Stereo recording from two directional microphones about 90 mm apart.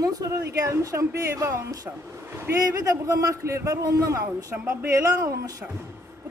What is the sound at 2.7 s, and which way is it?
Speech, 40° right (ahead or behind).